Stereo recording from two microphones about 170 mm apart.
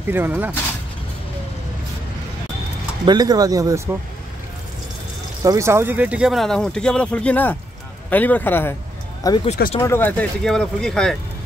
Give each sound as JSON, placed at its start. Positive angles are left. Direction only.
{"t": 0.1, "sound": "speech", "side_deg": -10}
{"t": 3.1, "sound": "speech", "side_deg": -25}
{"t": 5.4, "sound": "a man's voice", "side_deg": -20}
{"t": 9.2, "sound": "speech", "side_deg": 25}
{"t": 9.8, "sound": "speech", "side_deg": 15}